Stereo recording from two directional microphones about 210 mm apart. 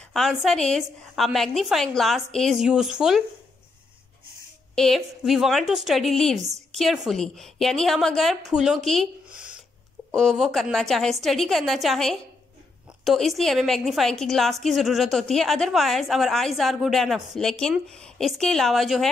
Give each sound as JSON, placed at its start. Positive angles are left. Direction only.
{"t": 0.1, "sound": "a woman's voice", "side_deg": 0}
{"t": 4.7, "sound": "a woman's voice", "side_deg": 0}
{"t": 10.1, "sound": "a woman's voice", "side_deg": 0}